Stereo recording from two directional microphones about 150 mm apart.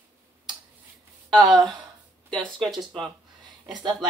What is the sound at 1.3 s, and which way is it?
Speech, 25° right (ahead or behind).